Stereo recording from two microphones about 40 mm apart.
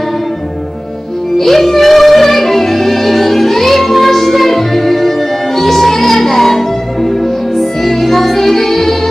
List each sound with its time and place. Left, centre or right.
1.4 s music: centre